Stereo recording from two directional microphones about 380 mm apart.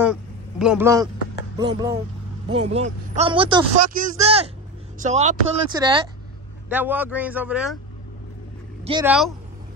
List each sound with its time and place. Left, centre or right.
0.0 s a man's voice: centre
8.8 s speech: centre